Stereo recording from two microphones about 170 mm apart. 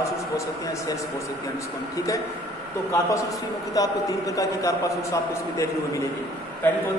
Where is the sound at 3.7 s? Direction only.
20° left (ahead or behind).